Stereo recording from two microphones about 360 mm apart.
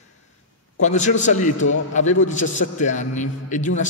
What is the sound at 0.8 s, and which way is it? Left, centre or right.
A man's voice, centre.